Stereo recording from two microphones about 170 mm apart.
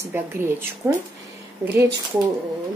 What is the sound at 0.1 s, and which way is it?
Speech, 15° right (ahead or behind).